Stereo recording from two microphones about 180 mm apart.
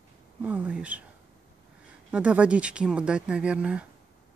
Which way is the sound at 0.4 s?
5° right (ahead or behind).